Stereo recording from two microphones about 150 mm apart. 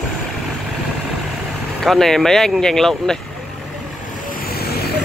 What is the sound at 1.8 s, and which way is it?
Speech, centre (ahead or behind).